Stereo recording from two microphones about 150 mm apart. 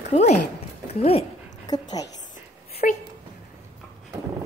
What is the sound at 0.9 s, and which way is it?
Dog, 40° left (ahead or behind).